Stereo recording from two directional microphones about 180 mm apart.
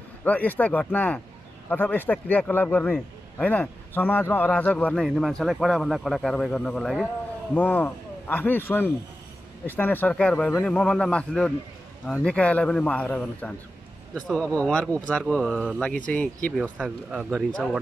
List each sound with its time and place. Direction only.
0.2 s a man's voice: 10° left (ahead or behind)